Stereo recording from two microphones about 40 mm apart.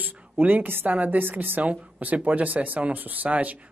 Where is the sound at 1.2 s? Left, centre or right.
Right.